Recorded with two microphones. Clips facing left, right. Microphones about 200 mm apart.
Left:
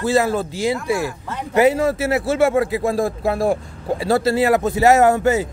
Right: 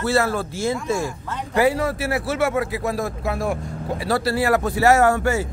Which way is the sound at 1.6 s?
25° left (ahead or behind).